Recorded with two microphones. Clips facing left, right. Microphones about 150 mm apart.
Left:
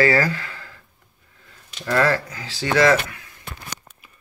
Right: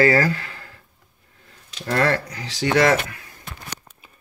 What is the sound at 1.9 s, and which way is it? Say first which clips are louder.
Speech: left 1 dB; 45° right (ahead or behind).